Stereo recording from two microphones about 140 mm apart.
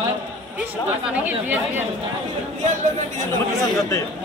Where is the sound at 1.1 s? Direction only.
10° right (ahead or behind).